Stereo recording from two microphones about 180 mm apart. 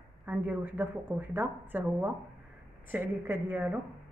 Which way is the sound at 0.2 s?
10° right (ahead or behind).